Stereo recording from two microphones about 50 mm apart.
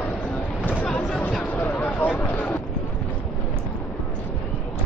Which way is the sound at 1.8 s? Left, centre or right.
Left.